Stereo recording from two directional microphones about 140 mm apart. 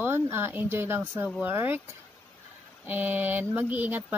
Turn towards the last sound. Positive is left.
turn(degrees=-10)  # may be behind; listen again after turning